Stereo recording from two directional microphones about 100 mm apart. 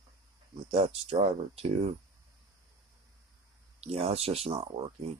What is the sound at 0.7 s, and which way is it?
Speech, 85° right.